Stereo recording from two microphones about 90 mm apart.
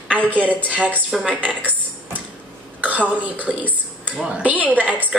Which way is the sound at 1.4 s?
20° right (ahead or behind).